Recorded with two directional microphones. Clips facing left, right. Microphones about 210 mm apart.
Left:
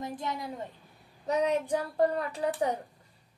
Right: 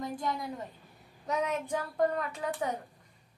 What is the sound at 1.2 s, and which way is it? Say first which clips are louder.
A woman's voice: left 5 dB; 35° left (ahead or behind).